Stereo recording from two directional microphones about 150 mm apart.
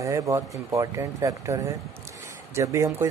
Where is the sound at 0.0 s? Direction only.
20° right (ahead or behind).